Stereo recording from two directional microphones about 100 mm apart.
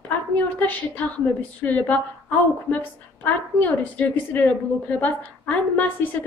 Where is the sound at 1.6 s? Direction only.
15° left (ahead or behind).